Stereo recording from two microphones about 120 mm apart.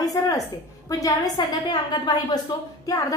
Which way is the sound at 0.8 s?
30° left (ahead or behind).